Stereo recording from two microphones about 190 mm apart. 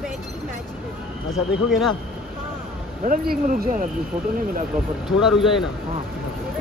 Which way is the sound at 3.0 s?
45° right (ahead or behind).